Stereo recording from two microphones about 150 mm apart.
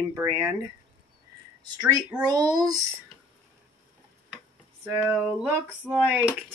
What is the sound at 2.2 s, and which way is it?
Speech, 25° right (ahead or behind).